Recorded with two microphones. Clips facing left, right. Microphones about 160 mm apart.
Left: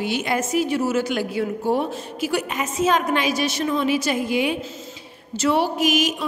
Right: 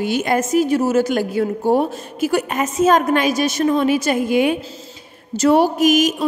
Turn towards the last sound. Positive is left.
turn(degrees=-45)  # may be behind; listen again after turning